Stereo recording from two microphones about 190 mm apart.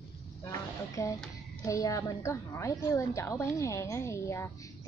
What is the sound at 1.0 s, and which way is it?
A woman's voice, 15° left (ahead or behind).